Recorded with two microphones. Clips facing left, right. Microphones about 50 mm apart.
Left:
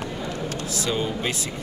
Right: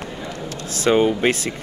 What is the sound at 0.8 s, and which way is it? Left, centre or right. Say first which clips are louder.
Speech: right 11 dB; right.